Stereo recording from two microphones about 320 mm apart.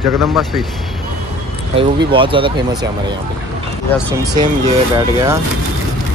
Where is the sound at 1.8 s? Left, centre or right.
Centre.